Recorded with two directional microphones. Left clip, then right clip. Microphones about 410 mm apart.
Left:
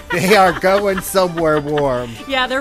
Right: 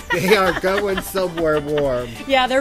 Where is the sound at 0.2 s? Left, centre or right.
Left.